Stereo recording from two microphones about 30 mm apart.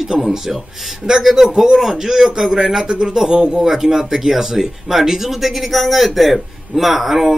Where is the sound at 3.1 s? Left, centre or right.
Centre.